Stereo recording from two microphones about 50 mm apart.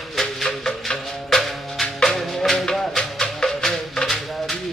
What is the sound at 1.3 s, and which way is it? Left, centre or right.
Music, centre.